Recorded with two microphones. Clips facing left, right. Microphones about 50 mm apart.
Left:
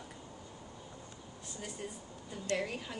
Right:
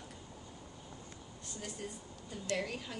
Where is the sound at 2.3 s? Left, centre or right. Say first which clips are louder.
Left 2 dB; centre.